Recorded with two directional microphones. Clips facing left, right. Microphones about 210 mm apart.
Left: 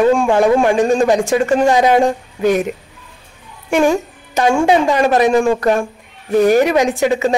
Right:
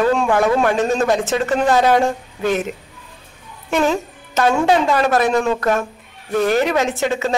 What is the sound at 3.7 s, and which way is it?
A woman's voice, 15° left (ahead or behind).